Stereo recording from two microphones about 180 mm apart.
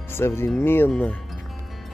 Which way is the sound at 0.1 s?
15° left (ahead or behind).